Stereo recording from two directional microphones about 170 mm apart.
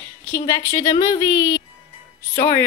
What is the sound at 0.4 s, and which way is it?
Speech, 20° left (ahead or behind).